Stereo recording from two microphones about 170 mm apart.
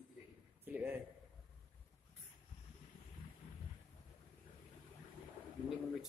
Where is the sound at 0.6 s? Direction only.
10° right (ahead or behind).